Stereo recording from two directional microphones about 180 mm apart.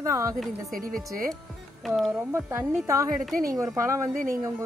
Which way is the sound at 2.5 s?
15° right (ahead or behind).